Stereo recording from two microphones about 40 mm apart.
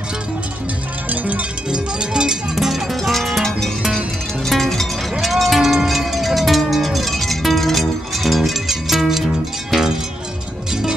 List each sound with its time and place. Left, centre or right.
1.0 s cowbell: right
1.7 s cowbell: right
2.6 s music: centre
10.7 s music: centre